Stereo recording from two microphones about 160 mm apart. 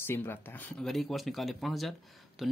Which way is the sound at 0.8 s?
Centre (ahead or behind).